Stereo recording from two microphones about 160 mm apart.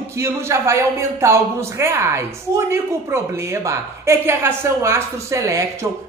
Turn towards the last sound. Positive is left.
turn(degrees=-20)  # may be behind; listen again after turning